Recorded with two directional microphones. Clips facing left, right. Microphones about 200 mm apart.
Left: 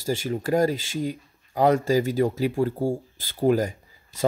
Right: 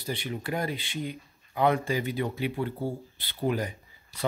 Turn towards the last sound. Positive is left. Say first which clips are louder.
# left 8 dB
turn(degrees=45)  # may be behind; listen again after turning